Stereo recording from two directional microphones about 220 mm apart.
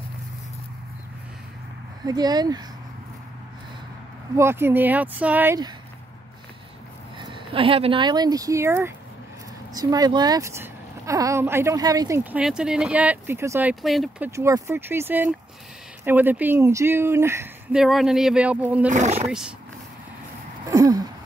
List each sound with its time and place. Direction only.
2.0 s speech: 20° right (ahead or behind)
4.4 s speech: 10° right (ahead or behind)
7.2 s speech: 25° right (ahead or behind); by 18.9 s 5° right (ahead or behind)
18.9 s speech: 30° right (ahead or behind)
20.7 s a sound: 15° right (ahead or behind)